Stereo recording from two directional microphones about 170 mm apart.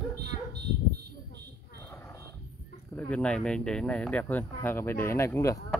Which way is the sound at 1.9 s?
15° left (ahead or behind).